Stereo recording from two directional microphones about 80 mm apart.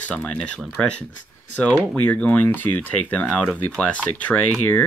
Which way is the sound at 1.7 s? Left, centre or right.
Centre.